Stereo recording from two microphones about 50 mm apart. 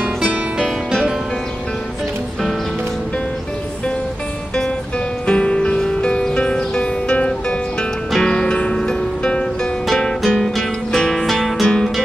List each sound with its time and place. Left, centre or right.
5.2 s music: centre
8.2 s music: centre
9.8 s music: centre